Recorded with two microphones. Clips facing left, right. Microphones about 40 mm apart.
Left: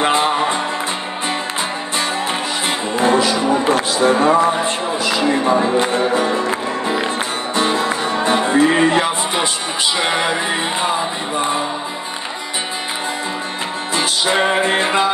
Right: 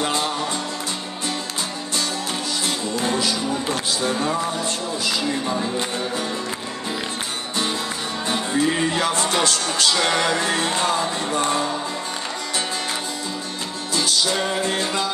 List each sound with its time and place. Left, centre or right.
0.0 s music: left
3.1 s music: left
4.4 s music: left
5.2 s music: left
8.3 s music: left
9.0 s music: centre
13.9 s music: left